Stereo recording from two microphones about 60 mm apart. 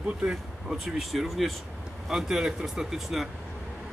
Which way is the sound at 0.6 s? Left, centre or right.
Centre.